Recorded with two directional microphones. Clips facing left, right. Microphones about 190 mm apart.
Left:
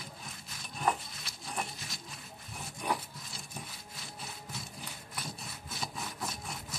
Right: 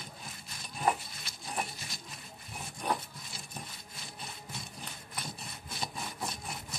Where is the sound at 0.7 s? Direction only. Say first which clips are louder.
Right 1 dB; 5° right (ahead or behind).